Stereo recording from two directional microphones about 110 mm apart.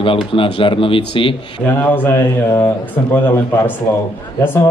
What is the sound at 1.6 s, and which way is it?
Speech, 15° left (ahead or behind).